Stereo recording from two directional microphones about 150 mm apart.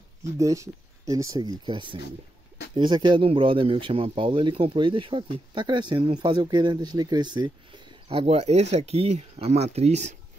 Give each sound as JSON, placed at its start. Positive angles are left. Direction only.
{"t": 0.4, "sound": "speech", "side_deg": -20}